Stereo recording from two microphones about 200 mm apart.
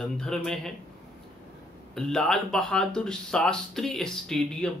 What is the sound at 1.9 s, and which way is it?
Speech, 5° left (ahead or behind).